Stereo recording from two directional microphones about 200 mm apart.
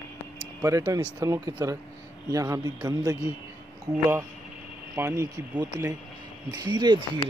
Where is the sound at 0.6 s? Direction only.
15° right (ahead or behind).